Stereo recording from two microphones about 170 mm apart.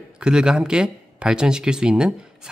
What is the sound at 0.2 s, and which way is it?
Speech, 5° right (ahead or behind).